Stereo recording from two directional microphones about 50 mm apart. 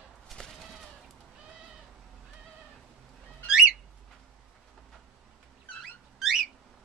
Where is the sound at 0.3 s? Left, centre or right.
Centre.